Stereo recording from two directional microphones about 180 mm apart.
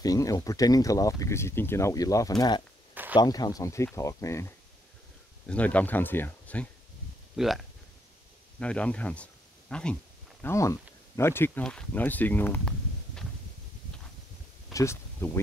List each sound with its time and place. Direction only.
0.0 s speech: 20° left (ahead or behind)
2.9 s a sound: 10° right (ahead or behind)
3.2 s speech: 20° left (ahead or behind)
5.5 s speech: 10° left (ahead or behind)
10.4 s speech: 15° left (ahead or behind)
14.7 s speech: 15° left (ahead or behind)